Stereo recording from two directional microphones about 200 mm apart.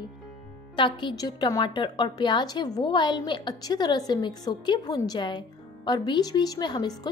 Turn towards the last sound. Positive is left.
turn(degrees=20)  # may be behind; listen again after turning